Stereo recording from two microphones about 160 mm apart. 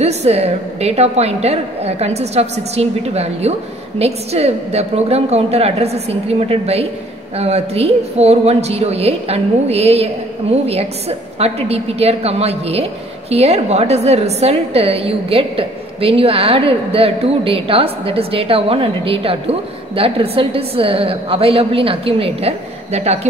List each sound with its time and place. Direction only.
0.0 s a woman's voice: 40° right (ahead or behind)